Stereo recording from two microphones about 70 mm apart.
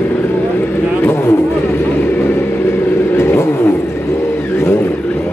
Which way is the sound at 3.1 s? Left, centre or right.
Left.